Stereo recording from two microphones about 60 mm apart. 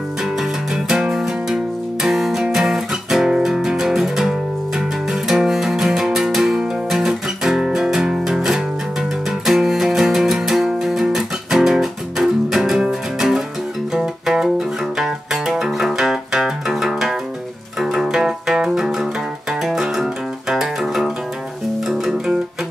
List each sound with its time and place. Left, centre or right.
0.2 s music: centre